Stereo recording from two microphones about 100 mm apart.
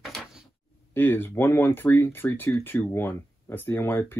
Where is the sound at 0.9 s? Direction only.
20° left (ahead or behind).